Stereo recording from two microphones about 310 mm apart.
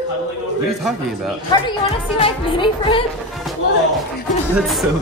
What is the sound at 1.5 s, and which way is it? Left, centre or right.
Speech, centre.